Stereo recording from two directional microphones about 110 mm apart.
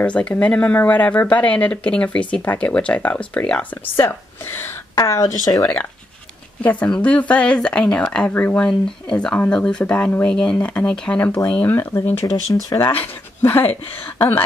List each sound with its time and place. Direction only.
0.0 s speech: 10° left (ahead or behind); by 5.6 s 30° left (ahead or behind)
6.6 s speech: 15° left (ahead or behind)
12.6 s speech: 35° left (ahead or behind)
13.0 s speech: 20° left (ahead or behind)